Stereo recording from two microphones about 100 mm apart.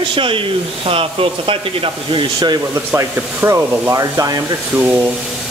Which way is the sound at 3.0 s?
25° right (ahead or behind).